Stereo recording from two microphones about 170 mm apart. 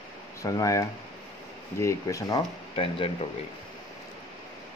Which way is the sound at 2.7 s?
35° left (ahead or behind).